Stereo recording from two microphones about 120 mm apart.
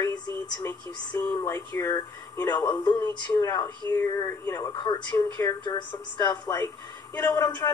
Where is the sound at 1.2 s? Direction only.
25° left (ahead or behind).